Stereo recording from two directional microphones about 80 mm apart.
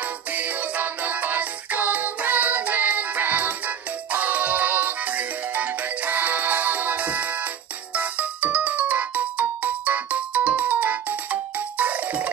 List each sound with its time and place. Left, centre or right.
0.0 s music: right